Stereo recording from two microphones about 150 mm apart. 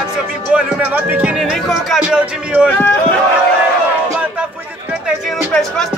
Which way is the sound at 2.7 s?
10° left (ahead or behind).